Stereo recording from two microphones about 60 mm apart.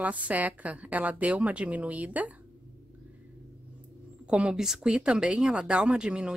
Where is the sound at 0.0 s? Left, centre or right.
Right.